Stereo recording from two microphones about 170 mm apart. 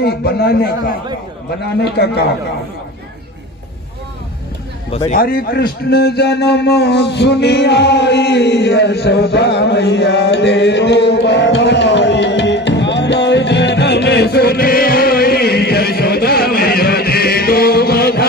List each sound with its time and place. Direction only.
0.0 s a man's voice: 70° left (ahead or behind)
5.1 s a man's voice: 60° left (ahead or behind)